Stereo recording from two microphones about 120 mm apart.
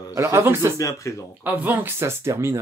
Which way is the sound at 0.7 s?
25° left (ahead or behind).